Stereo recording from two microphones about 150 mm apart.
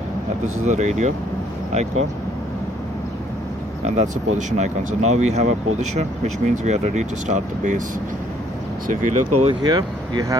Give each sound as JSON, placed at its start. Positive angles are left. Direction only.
{"t": 0.7, "sound": "speech", "side_deg": -50}
{"t": 3.8, "sound": "speech", "side_deg": -50}
{"t": 8.8, "sound": "speech", "side_deg": -55}
{"t": 9.5, "sound": "speech", "side_deg": -30}